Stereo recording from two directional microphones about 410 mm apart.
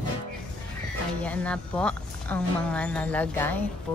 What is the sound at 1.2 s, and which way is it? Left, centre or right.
Speech, centre.